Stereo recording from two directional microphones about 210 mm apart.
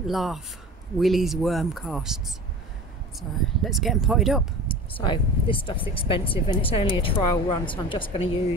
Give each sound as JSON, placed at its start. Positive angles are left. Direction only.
{"t": 0.0, "sound": "speech", "side_deg": 0}
{"t": 4.6, "sound": "speech", "side_deg": 25}